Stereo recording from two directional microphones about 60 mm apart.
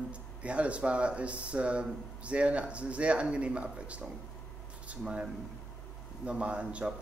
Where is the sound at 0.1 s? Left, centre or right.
Right.